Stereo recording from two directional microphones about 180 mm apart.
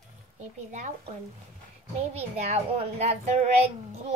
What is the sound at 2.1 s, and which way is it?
A child's voice, 35° right (ahead or behind).